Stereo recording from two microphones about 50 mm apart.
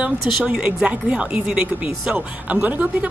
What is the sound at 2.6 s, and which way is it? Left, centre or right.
Speech, right.